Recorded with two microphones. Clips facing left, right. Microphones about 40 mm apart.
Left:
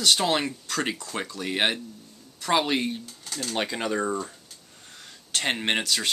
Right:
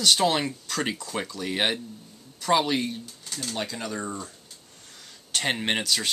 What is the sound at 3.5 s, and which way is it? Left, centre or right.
Speech, left.